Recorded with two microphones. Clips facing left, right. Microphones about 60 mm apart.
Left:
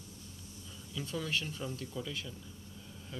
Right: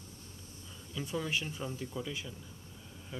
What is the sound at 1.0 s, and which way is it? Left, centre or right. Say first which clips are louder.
Speech: right 1 dB; centre.